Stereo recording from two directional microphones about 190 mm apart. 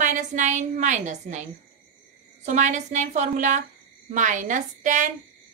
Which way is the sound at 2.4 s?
40° right (ahead or behind).